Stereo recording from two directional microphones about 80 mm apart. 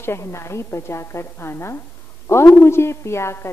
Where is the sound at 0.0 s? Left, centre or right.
Left.